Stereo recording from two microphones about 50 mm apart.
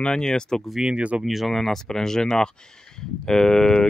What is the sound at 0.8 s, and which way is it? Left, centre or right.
Speech, right.